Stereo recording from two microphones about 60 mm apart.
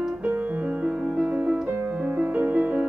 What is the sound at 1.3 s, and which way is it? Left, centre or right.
Music, right.